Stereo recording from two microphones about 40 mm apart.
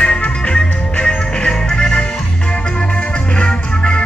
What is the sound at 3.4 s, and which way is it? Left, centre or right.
Music, left.